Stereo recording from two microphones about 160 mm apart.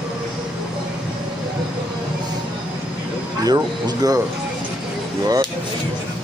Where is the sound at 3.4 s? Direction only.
25° right (ahead or behind).